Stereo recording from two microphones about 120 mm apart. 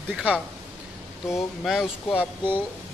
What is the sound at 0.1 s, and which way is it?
Speech, 10° right (ahead or behind).